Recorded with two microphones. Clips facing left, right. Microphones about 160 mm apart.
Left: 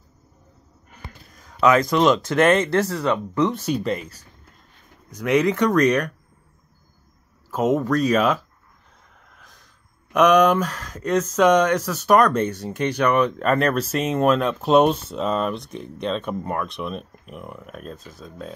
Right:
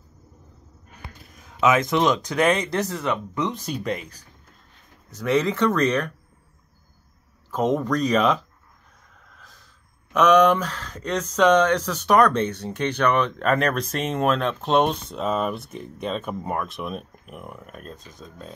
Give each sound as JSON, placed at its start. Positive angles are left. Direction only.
{"t": 1.8, "sound": "speech", "side_deg": -20}
{"t": 2.0, "sound": "speech", "side_deg": 0}
{"t": 5.1, "sound": "speech", "side_deg": 15}
{"t": 7.5, "sound": "speech", "side_deg": 10}
{"t": 10.1, "sound": "speech", "side_deg": 10}